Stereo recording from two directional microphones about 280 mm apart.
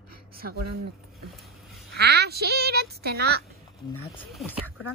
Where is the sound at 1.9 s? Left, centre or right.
Right.